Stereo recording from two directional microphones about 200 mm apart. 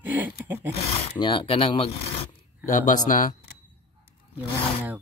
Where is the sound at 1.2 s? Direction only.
25° left (ahead or behind).